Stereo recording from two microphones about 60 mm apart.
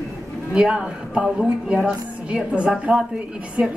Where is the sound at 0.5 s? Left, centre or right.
Centre.